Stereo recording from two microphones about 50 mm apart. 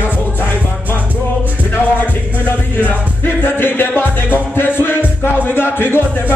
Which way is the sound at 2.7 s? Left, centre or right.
Left.